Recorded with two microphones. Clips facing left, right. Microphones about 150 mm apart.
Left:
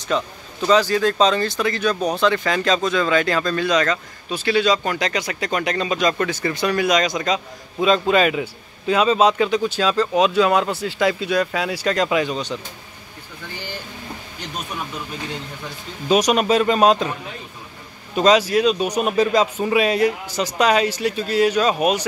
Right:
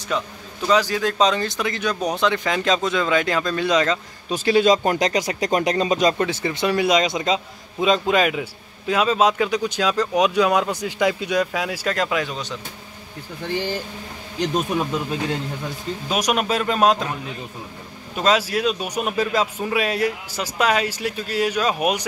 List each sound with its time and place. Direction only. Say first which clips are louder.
0.7 s speech: left 3 dB; 10° right (ahead or behind)
4.3 s speech: right 2 dB; 45° right (ahead or behind)
6.1 s a man's voice: even; 25° right (ahead or behind); by 12.5 s centre (ahead or behind)
14.5 s speech: right 7 dB; 45° right (ahead or behind)
16.1 s speech: left 6 dB; 5° right (ahead or behind)
18.1 s speech: left 5 dB; centre (ahead or behind)